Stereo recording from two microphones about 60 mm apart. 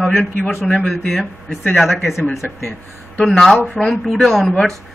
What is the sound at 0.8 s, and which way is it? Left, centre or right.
A man's voice, centre.